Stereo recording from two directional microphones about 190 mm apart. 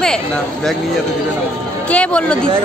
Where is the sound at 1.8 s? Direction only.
5° left (ahead or behind).